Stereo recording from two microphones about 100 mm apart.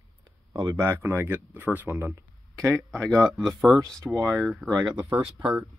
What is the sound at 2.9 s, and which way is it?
Speech, 10° left (ahead or behind).